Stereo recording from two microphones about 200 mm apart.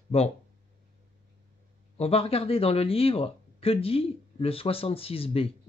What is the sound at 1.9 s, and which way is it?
Speech, 30° left (ahead or behind).